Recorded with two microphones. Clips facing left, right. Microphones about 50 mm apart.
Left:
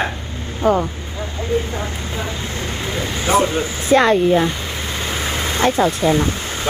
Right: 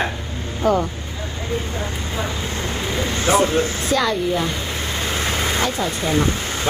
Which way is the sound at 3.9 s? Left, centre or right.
Left.